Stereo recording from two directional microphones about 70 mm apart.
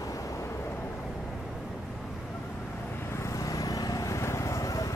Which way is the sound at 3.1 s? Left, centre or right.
Left.